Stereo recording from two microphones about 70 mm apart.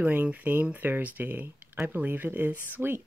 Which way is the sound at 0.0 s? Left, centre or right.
Right.